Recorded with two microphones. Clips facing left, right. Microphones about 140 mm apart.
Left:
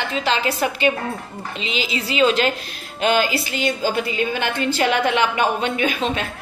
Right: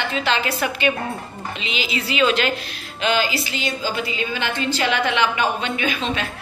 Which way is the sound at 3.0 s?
50° left (ahead or behind).